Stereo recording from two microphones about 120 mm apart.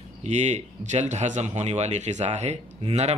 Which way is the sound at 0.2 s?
75° right (ahead or behind).